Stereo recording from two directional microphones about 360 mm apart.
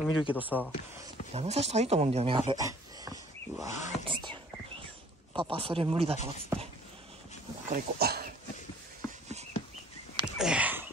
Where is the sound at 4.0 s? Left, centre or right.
Centre.